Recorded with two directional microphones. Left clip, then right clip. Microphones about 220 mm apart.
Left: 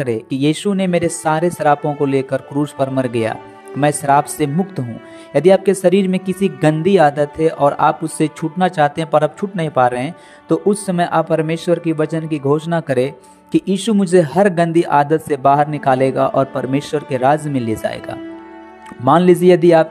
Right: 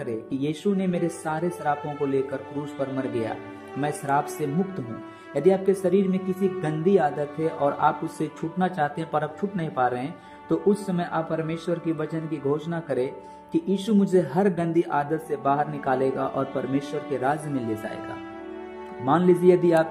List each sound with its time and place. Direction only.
0.0 s speech: 30° left (ahead or behind)
19.0 s speech: 30° left (ahead or behind)